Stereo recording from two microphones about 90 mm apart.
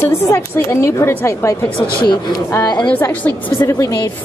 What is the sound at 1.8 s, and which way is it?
Speech, 60° left (ahead or behind).